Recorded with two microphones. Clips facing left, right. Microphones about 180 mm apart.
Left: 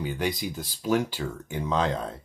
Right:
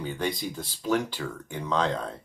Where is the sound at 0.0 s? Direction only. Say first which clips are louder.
Left 1 dB; 10° left (ahead or behind).